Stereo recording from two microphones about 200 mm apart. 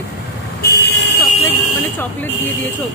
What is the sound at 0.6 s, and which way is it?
Vehicle, 55° left (ahead or behind).